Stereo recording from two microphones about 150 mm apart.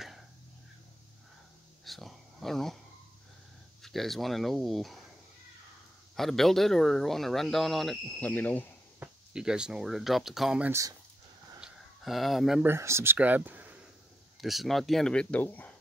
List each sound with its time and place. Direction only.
1.9 s speech: centre (ahead or behind)
3.8 s speech: centre (ahead or behind)
6.1 s speech: centre (ahead or behind)
9.0 s speech: 5° right (ahead or behind)
10.7 s speech: 20° right (ahead or behind)
11.6 s a sound: centre (ahead or behind)
12.6 s speech: 15° right (ahead or behind); by 15.7 s 10° left (ahead or behind)